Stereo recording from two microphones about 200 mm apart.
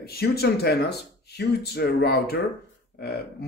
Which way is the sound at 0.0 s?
50° left (ahead or behind).